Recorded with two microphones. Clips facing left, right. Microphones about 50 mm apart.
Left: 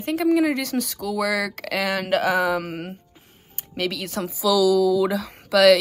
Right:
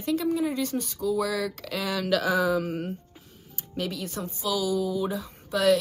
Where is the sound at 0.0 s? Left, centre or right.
Left.